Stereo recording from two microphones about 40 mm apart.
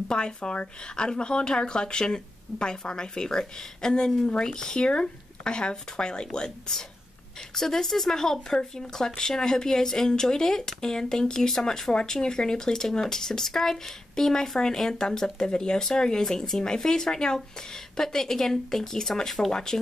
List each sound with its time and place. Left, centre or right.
0.1 s speech: left
7.5 s speech: centre
19.5 s speech: centre